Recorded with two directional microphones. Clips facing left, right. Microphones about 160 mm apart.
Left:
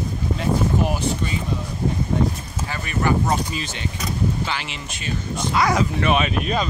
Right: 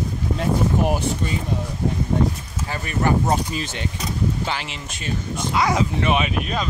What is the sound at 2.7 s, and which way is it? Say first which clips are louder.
Speech: right 1 dB; 40° right (ahead or behind).